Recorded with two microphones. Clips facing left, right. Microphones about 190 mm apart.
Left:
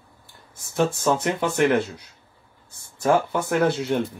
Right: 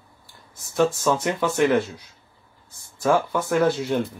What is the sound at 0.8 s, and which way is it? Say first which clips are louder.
Speech: right 1 dB; 15° left (ahead or behind).